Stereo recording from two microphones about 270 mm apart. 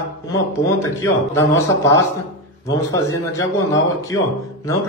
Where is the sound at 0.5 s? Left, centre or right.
Centre.